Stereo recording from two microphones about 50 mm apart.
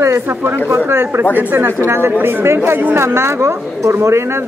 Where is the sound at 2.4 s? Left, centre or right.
Right.